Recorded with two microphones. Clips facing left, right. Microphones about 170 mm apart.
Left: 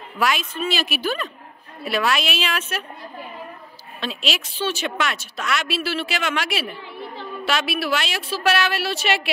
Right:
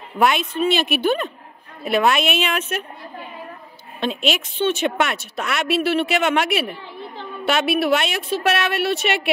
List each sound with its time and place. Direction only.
0.2 s a woman's voice: 60° right (ahead or behind)
4.0 s a woman's voice: 55° right (ahead or behind)